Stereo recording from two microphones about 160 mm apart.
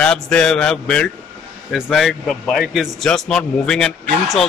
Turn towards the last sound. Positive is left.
turn(degrees=5)  # may be behind; listen again after turning